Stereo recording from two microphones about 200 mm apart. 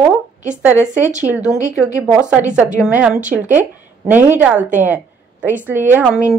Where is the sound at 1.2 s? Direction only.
10° right (ahead or behind).